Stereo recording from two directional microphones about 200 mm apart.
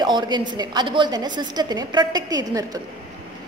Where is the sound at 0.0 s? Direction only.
20° right (ahead or behind).